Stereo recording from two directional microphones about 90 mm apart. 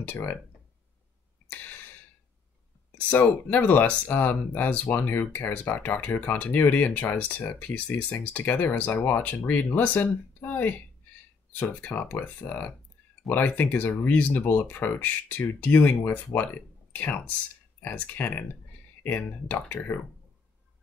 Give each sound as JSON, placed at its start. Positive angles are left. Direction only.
{"t": 0.0, "sound": "speech", "side_deg": 20}
{"t": 1.5, "sound": "a sound", "side_deg": 20}
{"t": 2.9, "sound": "speech", "side_deg": 20}